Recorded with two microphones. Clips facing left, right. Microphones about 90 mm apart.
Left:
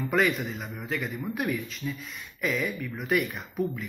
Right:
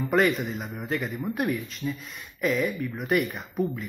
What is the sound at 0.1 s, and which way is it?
Speech, centre (ahead or behind).